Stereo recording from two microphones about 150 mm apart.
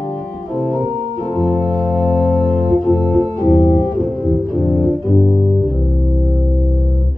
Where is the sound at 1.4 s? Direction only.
10° left (ahead or behind).